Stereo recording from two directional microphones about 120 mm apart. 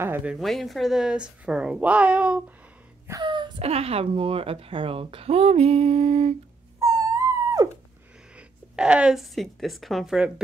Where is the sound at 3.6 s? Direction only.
60° right (ahead or behind).